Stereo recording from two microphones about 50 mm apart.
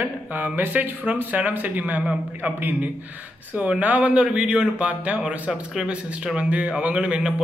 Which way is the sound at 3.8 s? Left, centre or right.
Right.